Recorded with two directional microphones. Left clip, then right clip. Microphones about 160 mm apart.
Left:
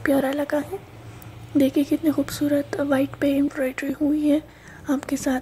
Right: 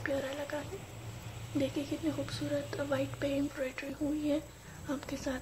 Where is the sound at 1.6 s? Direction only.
45° left (ahead or behind).